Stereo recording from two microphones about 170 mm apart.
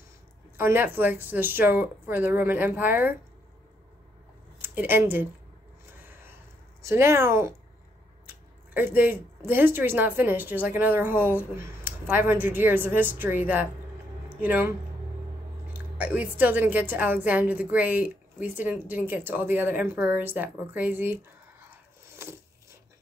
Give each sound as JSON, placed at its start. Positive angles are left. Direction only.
{"t": 0.6, "sound": "a woman's voice", "side_deg": -15}
{"t": 4.6, "sound": "speech", "side_deg": -10}
{"t": 6.0, "sound": "a sound", "side_deg": -15}
{"t": 6.9, "sound": "a woman's voice", "side_deg": -15}
{"t": 8.7, "sound": "a woman's voice", "side_deg": -10}
{"t": 15.7, "sound": "a woman's voice", "side_deg": -10}